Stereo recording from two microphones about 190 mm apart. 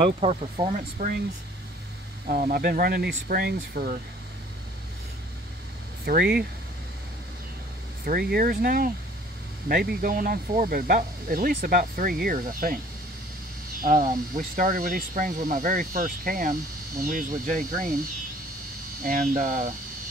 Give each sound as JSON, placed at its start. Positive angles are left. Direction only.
{"t": 0.0, "sound": "speech", "side_deg": -30}
{"t": 2.2, "sound": "speech", "side_deg": -45}
{"t": 6.0, "sound": "speech", "side_deg": -55}
{"t": 8.0, "sound": "speech", "side_deg": -55}
{"t": 13.7, "sound": "speech", "side_deg": -45}
{"t": 19.0, "sound": "speech", "side_deg": -45}